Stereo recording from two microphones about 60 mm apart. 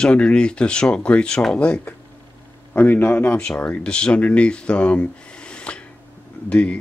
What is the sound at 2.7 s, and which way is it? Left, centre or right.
Speech, left.